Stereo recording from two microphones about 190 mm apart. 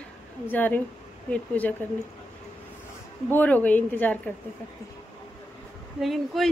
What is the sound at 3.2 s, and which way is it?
Speech, 10° left (ahead or behind).